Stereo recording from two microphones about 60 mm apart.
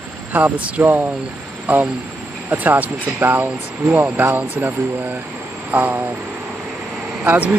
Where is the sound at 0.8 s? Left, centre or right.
Right.